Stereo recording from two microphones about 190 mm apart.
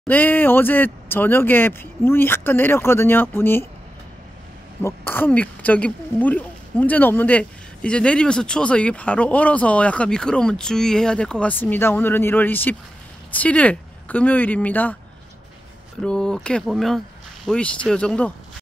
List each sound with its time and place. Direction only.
0.1 s speech: 10° left (ahead or behind)
4.8 s speech: 10° left (ahead or behind)
16.0 s speech: 5° left (ahead or behind)